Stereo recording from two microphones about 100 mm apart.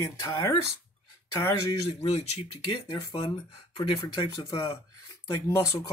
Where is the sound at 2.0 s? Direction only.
90° left.